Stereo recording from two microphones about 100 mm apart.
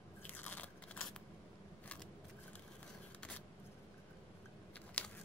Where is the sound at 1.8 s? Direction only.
10° left (ahead or behind).